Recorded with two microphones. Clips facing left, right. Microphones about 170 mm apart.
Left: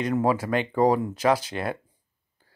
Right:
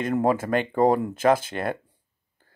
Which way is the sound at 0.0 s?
50° right (ahead or behind).